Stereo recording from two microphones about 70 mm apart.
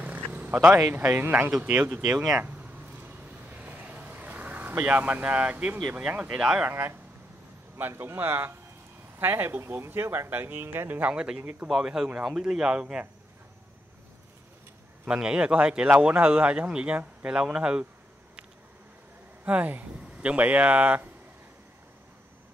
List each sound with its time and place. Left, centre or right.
0.0 s purr: right
0.7 s speech: right
1.0 s speech: right
2.4 s a sound: right
3.0 s vehicle: right
5.9 s speech: right
6.7 s speech: right; by 13.0 s centre
15.0 s speech: centre
19.4 s speech: right